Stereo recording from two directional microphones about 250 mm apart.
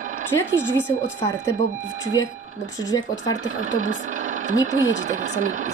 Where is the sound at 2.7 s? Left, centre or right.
Centre.